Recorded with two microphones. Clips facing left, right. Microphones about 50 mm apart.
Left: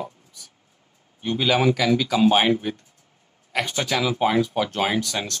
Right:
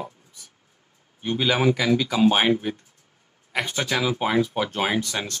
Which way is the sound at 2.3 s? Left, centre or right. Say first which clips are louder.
Left 2 dB; centre.